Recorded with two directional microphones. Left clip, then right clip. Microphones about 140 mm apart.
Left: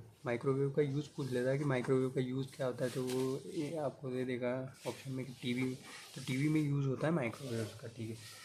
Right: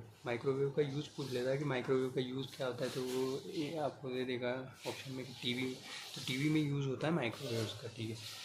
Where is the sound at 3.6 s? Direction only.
15° left (ahead or behind).